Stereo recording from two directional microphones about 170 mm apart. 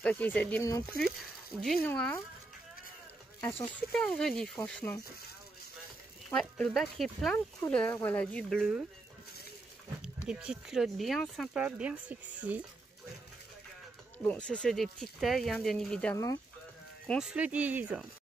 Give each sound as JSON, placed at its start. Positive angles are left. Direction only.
{"t": 0.0, "sound": "speech", "side_deg": 10}
{"t": 1.8, "sound": "speech", "side_deg": 10}
{"t": 3.3, "sound": "speech", "side_deg": 15}
{"t": 6.3, "sound": "speech", "side_deg": 0}
{"t": 10.2, "sound": "speech", "side_deg": -5}
{"t": 14.2, "sound": "speech", "side_deg": 5}